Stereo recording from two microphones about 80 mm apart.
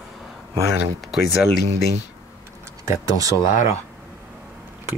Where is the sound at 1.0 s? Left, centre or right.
Centre.